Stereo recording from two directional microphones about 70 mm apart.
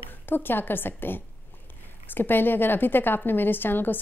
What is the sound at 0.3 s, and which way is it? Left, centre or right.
A woman's voice, left.